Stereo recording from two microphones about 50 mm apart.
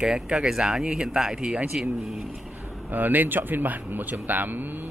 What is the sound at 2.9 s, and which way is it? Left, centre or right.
Speech, right.